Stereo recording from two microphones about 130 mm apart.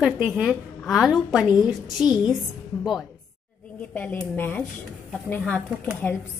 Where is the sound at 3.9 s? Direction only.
15° left (ahead or behind).